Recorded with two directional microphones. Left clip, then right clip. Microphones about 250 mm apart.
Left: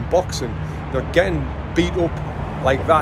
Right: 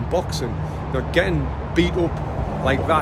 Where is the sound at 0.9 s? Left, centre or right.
Centre.